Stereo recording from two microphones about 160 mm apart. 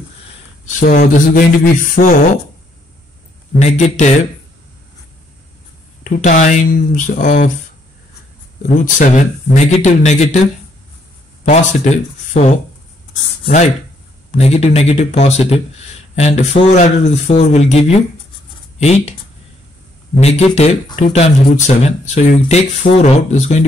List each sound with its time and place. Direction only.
0.7 s speech: 55° left (ahead or behind)
3.6 s speech: 45° left (ahead or behind)
6.0 s speech: 50° left (ahead or behind)
8.6 s speech: 50° left (ahead or behind)
11.4 s speech: 50° left (ahead or behind)
20.2 s speech: 40° left (ahead or behind)